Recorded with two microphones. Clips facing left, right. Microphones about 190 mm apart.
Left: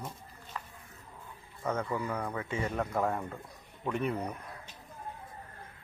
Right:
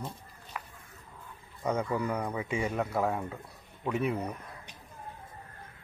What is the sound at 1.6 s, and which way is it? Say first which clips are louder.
Speech: right 3 dB; 15° right (ahead or behind).